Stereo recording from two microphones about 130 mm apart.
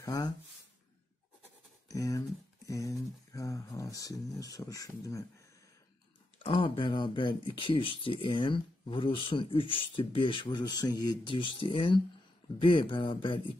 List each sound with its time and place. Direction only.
0.0 s speech: 30° left (ahead or behind)
1.9 s speech: 25° left (ahead or behind)
6.4 s speech: 45° left (ahead or behind)